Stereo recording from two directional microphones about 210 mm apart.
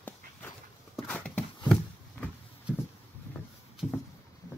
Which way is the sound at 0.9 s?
5° left (ahead or behind).